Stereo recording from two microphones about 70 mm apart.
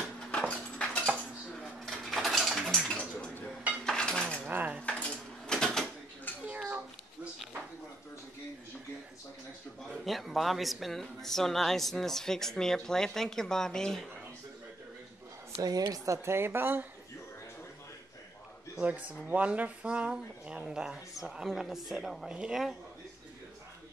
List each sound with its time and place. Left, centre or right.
0.3 s a sound: centre
2.0 s mechanisms: centre
3.8 s cutlery: centre
4.5 s cutlery: right
4.8 s a sound: centre
6.3 s a sound: left
10.0 s speech: centre
15.5 s a woman's voice: right
16.3 s speech: right
18.8 s speech: right